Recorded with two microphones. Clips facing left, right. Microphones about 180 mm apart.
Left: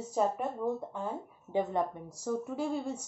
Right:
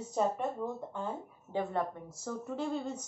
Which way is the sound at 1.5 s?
20° left (ahead or behind).